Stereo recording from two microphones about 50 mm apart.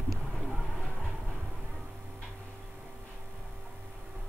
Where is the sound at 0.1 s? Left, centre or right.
Centre.